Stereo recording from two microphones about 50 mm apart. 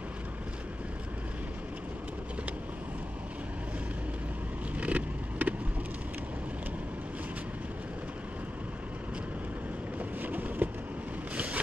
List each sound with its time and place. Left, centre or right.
4.7 s vehicle: right
10.2 s a sound: right
11.3 s mechanisms: right